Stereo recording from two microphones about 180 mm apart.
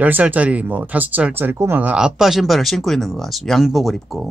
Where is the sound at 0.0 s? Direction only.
10° right (ahead or behind).